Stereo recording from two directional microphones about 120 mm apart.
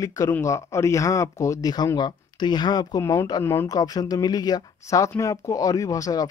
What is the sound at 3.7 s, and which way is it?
Speech, 30° left (ahead or behind).